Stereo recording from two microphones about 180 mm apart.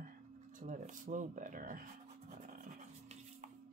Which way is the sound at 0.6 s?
45° right (ahead or behind).